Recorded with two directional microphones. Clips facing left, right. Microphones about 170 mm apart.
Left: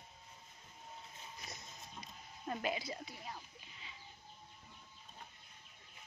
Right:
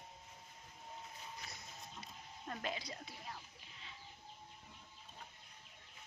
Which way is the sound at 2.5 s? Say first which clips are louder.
Left 5 dB; 10° left (ahead or behind).